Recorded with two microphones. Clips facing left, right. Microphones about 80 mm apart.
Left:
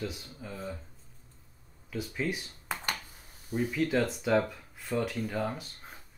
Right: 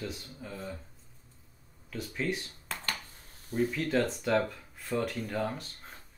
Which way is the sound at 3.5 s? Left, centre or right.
Centre.